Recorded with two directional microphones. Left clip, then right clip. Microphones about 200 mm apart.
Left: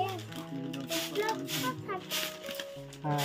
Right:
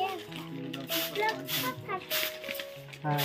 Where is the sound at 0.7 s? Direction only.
20° left (ahead or behind).